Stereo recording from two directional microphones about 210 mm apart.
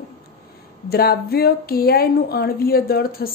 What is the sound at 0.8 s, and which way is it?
Speech, 50° left (ahead or behind).